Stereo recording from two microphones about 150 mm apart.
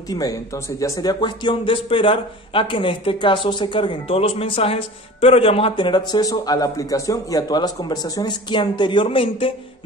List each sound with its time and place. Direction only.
0.1 s speech: 25° left (ahead or behind)